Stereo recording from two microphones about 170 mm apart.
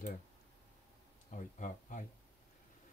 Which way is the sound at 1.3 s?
50° left (ahead or behind).